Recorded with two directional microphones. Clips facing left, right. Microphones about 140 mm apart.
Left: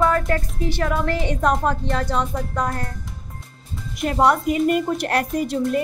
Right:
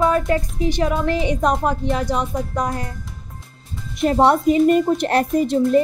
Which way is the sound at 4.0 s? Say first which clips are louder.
Right 3 dB; 30° right (ahead or behind).